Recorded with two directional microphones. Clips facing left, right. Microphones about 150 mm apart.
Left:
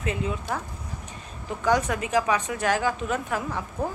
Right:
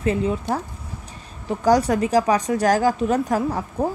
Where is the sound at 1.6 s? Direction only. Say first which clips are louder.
Right 6 dB; 35° right (ahead or behind).